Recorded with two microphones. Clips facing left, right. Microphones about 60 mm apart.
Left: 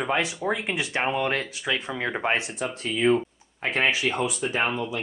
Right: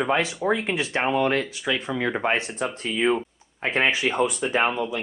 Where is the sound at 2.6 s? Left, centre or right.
Centre.